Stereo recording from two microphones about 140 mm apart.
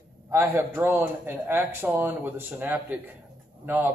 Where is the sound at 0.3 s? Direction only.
20° right (ahead or behind).